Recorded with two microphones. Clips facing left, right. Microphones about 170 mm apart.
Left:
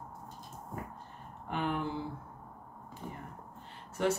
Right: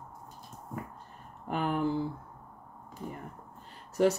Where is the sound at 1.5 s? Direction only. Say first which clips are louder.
Right 4 dB; 40° right (ahead or behind).